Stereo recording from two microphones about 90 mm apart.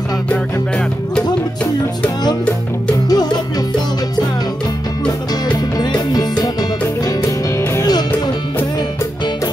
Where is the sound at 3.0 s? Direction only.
50° left (ahead or behind).